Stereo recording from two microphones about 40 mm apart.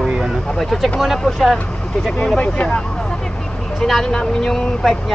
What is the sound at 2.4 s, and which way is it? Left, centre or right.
Speech, left.